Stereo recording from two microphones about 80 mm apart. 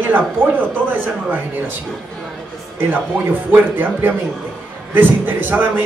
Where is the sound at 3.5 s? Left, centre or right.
Right.